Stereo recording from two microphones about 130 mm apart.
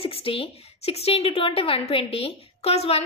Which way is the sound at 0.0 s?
45° left (ahead or behind).